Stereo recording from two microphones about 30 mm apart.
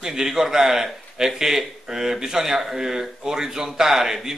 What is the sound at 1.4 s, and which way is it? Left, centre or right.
Speech, centre.